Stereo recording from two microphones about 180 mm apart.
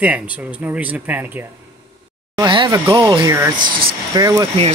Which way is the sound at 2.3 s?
25° right (ahead or behind).